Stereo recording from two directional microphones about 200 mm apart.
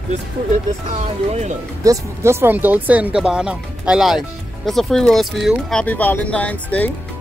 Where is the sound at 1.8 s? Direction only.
15° right (ahead or behind); by 6.9 s 5° left (ahead or behind).